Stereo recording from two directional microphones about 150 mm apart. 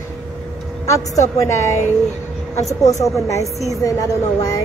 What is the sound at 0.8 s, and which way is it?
Speech, 20° left (ahead or behind).